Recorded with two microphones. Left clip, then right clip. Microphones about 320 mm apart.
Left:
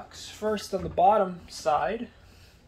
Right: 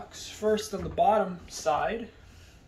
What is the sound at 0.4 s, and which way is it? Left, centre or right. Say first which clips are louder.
Speech: right 1 dB; centre.